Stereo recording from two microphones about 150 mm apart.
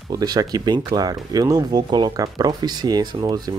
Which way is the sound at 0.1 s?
25° right (ahead or behind).